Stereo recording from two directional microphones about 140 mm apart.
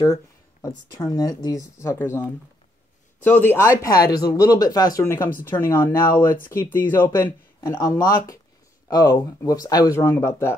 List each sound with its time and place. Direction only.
0.0 s speech: 20° left (ahead or behind)
5.0 s speech: 15° left (ahead or behind)
7.6 s speech: 25° left (ahead or behind)